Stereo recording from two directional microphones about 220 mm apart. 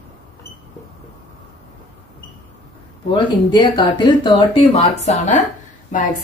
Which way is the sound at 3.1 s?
20° left (ahead or behind).